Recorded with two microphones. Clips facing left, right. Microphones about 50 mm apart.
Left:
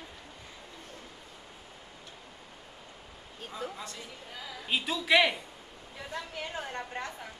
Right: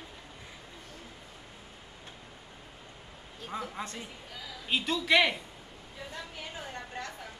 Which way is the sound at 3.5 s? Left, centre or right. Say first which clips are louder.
Right 2 dB; right.